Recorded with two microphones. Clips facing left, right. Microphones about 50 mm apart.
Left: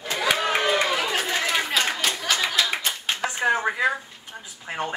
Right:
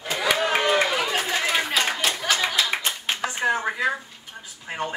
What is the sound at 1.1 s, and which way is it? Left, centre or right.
Chatter, centre.